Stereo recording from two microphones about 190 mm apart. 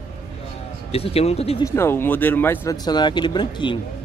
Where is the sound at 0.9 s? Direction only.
30° left (ahead or behind).